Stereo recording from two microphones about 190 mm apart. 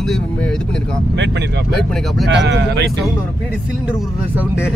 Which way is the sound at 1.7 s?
Centre (ahead or behind).